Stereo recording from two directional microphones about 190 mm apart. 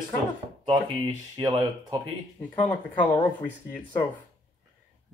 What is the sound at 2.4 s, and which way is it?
Speech, 10° left (ahead or behind).